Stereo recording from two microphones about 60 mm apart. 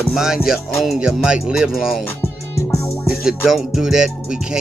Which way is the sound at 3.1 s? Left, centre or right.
Centre.